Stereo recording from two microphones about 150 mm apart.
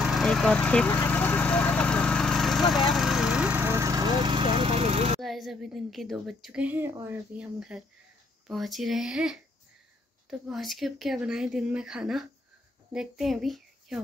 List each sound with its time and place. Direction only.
0.0 s a sound: centre (ahead or behind); by 5.2 s 40° right (ahead or behind)
5.2 s a woman's voice: centre (ahead or behind); by 7.2 s 20° right (ahead or behind)
7.3 s a woman's voice: 5° right (ahead or behind)
10.5 s a woman's voice: centre (ahead or behind)